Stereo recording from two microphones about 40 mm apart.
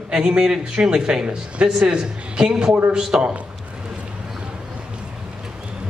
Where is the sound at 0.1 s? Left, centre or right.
Right.